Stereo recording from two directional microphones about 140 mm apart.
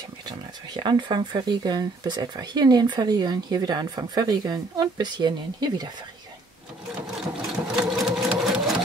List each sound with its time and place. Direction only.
0.3 s speech: 35° right (ahead or behind)
7.7 s sewing machine: 5° right (ahead or behind)